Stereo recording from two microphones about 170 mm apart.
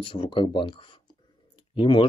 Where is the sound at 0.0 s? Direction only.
30° left (ahead or behind).